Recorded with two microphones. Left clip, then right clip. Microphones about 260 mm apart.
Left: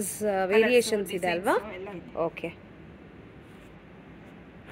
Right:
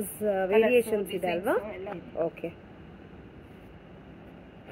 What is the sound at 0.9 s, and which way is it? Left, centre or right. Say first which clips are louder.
Speech: left 1 dB; centre.